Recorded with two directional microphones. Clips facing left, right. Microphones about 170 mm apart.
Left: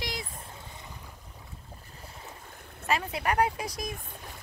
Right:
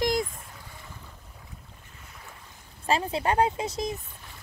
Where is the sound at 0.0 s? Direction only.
45° right (ahead or behind).